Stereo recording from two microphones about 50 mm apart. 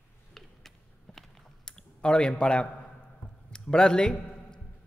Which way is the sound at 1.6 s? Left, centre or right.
Centre.